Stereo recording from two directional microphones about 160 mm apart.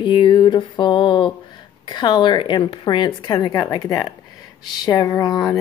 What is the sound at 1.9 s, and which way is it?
A woman's voice, 30° left (ahead or behind).